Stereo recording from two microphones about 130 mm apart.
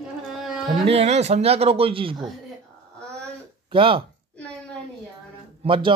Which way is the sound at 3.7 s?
40° right (ahead or behind).